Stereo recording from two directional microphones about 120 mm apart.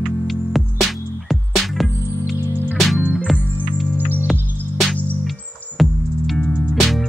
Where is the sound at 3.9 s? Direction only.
15° right (ahead or behind).